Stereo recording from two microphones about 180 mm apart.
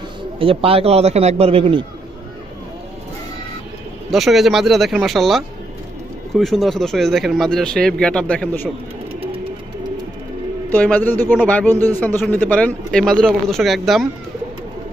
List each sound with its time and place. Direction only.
0.4 s a man's voice: 30° right (ahead or behind)
4.1 s speech: centre (ahead or behind)
10.7 s speech: 10° left (ahead or behind)